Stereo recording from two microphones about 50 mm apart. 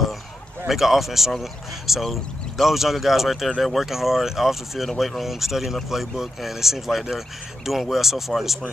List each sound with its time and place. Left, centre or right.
0.7 s speech: centre